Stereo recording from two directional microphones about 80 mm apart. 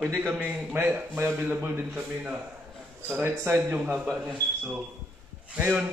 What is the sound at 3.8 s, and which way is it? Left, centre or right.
Speech, centre.